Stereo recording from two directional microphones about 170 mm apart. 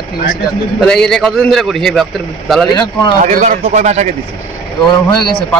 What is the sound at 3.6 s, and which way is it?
Speech, 40° right (ahead or behind).